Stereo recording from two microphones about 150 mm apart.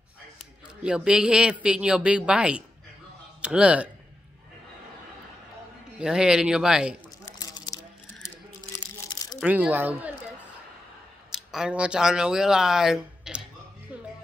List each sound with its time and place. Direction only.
0.8 s speech: 5° right (ahead or behind)
5.9 s speech: 5° right (ahead or behind)
7.2 s a sound: 25° left (ahead or behind)
9.4 s speech: 10° right (ahead or behind)
11.3 s speech: 5° right (ahead or behind)